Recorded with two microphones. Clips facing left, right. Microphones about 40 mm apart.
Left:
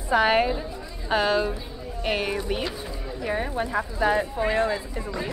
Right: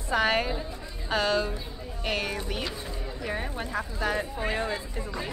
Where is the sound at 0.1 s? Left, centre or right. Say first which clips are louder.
Left 5 dB; centre.